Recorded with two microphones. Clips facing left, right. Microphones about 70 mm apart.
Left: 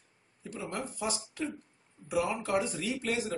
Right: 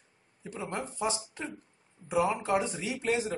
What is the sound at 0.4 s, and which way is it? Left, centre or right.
A man's voice, right.